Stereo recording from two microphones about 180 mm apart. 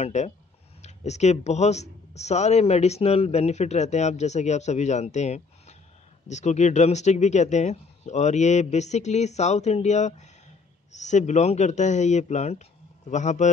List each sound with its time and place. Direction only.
0.0 s a man's voice: 40° left (ahead or behind)